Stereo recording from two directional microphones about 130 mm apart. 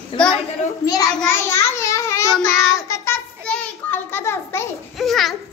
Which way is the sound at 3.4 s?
10° left (ahead or behind).